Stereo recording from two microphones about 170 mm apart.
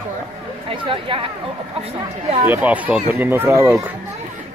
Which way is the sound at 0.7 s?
30° right (ahead or behind).